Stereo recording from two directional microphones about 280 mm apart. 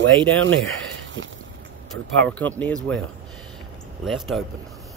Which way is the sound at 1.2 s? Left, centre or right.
Right.